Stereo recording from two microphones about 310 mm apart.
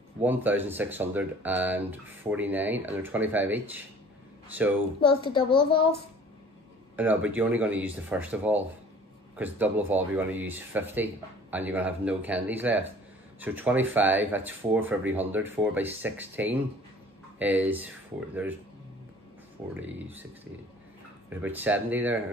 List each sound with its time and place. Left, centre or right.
0.2 s speech: centre
5.0 s a child's voice: centre
7.0 s speech: centre
19.7 s speech: centre
21.3 s speech: centre